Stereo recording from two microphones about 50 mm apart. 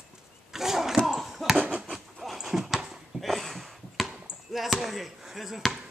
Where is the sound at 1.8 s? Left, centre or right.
Centre.